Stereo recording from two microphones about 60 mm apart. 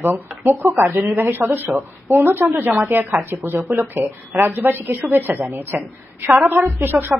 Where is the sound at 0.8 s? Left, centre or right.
Right.